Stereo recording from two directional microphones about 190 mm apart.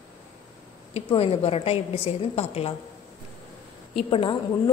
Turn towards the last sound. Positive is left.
turn(degrees=30)  # may be behind; listen again after turning